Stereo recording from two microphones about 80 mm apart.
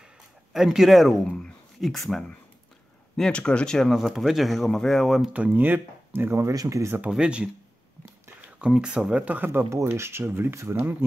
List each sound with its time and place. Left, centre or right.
0.5 s speech: centre
1.2 s speech: centre
3.9 s speech: centre
5.3 s speech: right
7.1 s speech: centre; by 10.9 s right